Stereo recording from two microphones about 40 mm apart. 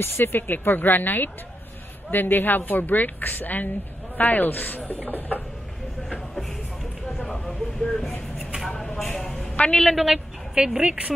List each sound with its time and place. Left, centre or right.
0.0 s a woman's voice: left
7.2 s a sound: centre
9.9 s a woman's voice: centre
10.5 s a woman's voice: centre